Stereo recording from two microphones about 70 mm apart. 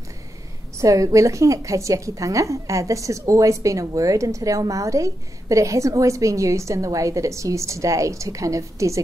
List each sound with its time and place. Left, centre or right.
0.7 s a woman's voice: right